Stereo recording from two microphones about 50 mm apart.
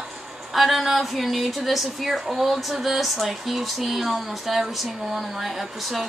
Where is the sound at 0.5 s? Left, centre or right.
Centre.